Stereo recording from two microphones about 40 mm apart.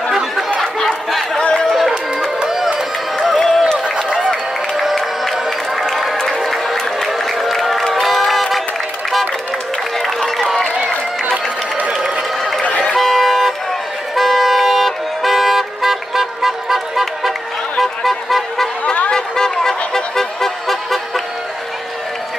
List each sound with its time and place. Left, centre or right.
0.7 s a sound: centre
1.4 s a sound: left
1.7 s music: centre
3.3 s a sound: centre
3.8 s run: centre
4.9 s music: centre
6.4 s applause: centre
7.0 s music: centre
10.0 s run: centre
12.9 s vehicle: centre
17.7 s music: centre